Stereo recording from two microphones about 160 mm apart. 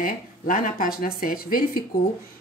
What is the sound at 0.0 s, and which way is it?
A woman's voice, 60° left (ahead or behind).